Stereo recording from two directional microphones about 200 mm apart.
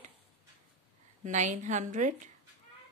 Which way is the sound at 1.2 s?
40° right (ahead or behind).